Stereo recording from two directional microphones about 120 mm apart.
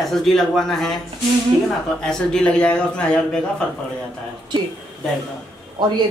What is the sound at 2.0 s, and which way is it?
Speech, 5° left (ahead or behind).